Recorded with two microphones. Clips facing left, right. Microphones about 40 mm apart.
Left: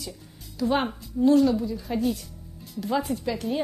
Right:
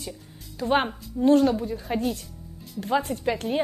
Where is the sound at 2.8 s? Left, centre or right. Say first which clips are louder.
Right 1 dB; right.